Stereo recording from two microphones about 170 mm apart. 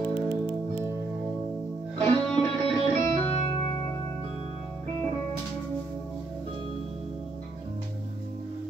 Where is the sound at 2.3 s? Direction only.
35° left (ahead or behind).